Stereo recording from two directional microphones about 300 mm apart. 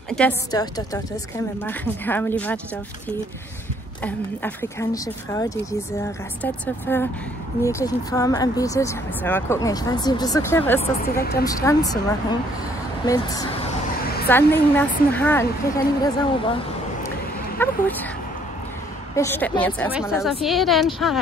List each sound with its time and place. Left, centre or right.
0.1 s speech: centre
4.0 s speech: centre
10.8 s speech: left
11.4 s speech: centre
14.0 s a sound: left
14.3 s speech: centre
19.1 s speech: centre